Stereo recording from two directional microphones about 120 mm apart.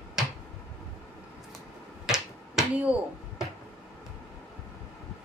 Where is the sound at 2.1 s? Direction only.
5° right (ahead or behind).